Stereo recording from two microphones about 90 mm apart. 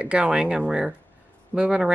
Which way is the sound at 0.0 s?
10° right (ahead or behind).